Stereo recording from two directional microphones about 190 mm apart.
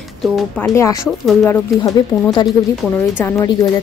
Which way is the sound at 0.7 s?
15° left (ahead or behind).